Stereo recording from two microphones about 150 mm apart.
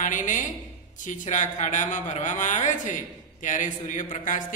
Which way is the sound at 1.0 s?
55° left (ahead or behind).